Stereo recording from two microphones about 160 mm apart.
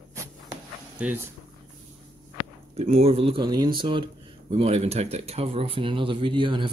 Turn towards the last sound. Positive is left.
turn(degrees=-30)  # may be behind; listen again after turning